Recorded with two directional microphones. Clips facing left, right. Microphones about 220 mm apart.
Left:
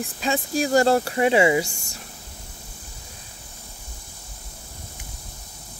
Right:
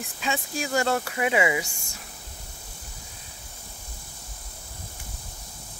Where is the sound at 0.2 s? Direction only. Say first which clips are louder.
Left 6 dB; 35° left (ahead or behind).